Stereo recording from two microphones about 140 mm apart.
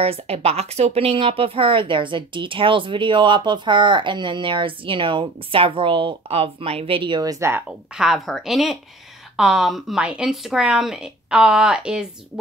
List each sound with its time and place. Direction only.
0.0 s speech: 45° right (ahead or behind); by 7.6 s 20° right (ahead or behind)
7.9 s speech: 5° right (ahead or behind)